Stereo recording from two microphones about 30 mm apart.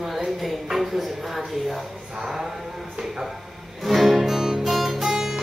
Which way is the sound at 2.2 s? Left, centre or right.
Centre.